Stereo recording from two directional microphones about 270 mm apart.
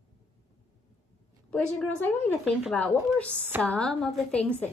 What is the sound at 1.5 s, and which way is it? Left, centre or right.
A woman's voice, centre.